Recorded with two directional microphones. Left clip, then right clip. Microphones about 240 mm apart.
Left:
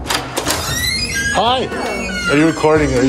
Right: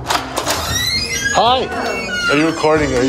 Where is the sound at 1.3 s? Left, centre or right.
Centre.